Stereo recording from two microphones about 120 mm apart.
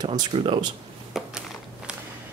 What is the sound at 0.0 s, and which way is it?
Speech, 35° right (ahead or behind).